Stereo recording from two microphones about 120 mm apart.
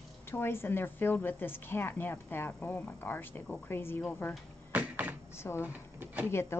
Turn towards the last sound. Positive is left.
turn(degrees=20)  # may be behind; listen again after turning